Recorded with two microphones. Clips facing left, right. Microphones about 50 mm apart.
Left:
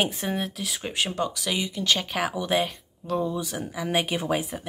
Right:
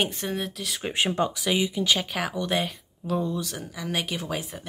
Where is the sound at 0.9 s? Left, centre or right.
Right; by 3.3 s centre.